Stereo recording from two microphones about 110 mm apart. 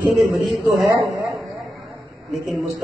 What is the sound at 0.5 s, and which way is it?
Speech, centre (ahead or behind).